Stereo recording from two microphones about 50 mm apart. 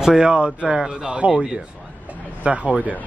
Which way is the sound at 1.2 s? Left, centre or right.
Right.